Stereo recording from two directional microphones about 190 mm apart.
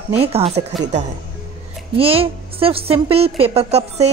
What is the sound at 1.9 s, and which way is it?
Speech, 30° right (ahead or behind).